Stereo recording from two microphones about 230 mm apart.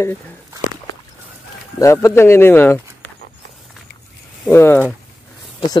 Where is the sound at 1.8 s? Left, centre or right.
Centre.